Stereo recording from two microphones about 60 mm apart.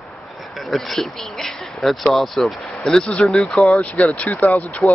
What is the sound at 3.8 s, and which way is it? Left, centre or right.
Speech, left.